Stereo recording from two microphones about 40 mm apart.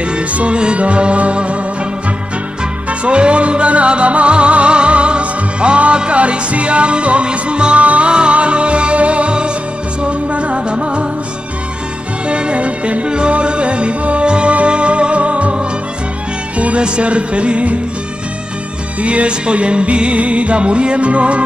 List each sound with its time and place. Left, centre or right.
0.0 s music: right
2.9 s music: right
12.3 s music: right
18.9 s music: right